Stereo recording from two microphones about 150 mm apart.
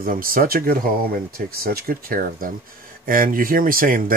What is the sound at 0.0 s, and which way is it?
Speech, 70° right (ahead or behind).